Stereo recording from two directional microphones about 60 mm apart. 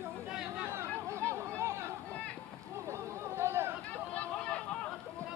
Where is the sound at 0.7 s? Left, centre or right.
Right.